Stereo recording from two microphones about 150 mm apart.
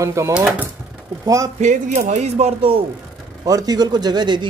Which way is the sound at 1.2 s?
25° right (ahead or behind).